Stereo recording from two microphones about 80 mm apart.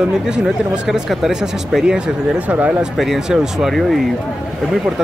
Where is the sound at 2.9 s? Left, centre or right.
Centre.